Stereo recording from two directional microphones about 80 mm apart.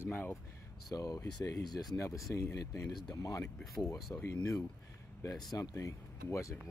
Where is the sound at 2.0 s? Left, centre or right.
Left.